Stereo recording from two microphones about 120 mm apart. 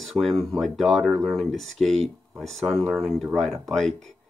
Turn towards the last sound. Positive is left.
turn(degrees=0)  # may be behind; listen again after turning